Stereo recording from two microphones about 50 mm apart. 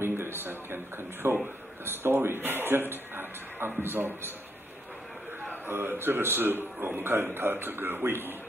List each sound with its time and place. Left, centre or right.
0.0 s a sound: right
1.2 s speech: right
5.7 s speech: right